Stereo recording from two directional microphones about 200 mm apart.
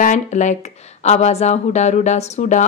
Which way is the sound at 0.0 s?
40° left (ahead or behind).